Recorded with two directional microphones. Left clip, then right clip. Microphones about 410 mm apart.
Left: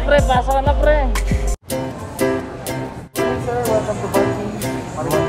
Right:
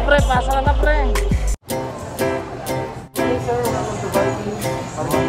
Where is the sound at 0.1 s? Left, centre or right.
Centre.